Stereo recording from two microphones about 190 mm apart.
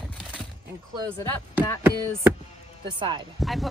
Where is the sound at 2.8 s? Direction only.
25° right (ahead or behind).